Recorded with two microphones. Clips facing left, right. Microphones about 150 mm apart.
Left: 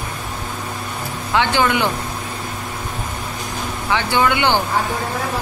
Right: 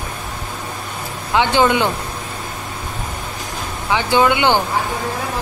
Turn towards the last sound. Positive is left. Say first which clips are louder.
# right 2 dB
turn(degrees=-20)  # may be behind; listen again after turning